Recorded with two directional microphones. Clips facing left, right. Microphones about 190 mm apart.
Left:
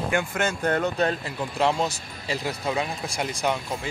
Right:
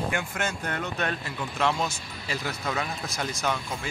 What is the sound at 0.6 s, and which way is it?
Speech, 45° left (ahead or behind).